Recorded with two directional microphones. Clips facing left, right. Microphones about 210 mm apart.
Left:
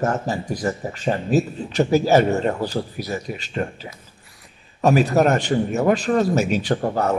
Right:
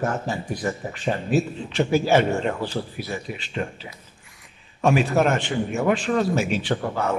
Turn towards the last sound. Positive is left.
turn(degrees=40)  # may be behind; listen again after turning